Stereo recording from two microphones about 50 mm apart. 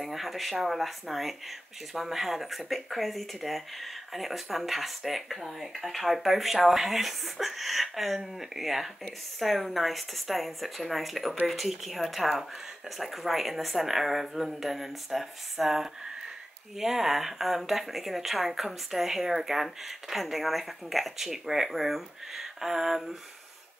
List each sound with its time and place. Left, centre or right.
0.0 s speech: centre